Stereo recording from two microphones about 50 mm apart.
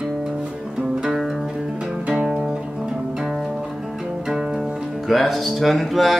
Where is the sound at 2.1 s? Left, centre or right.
Centre.